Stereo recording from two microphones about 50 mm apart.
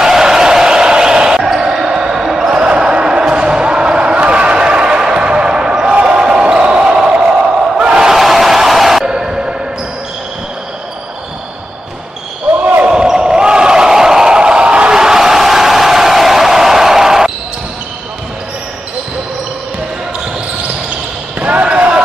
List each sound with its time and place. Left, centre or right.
0.0 s basketball bounce: centre
5.9 s a sound: centre
7.7 s battle cry: centre
8.2 s a sound: centre
9.0 s music: centre
12.5 s basketball bounce: right
12.9 s basketball bounce: centre
21.4 s basketball bounce: right